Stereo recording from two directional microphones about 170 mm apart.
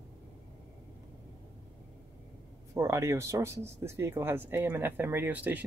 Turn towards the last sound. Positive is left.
turn(degrees=-10)  # may be behind; listen again after turning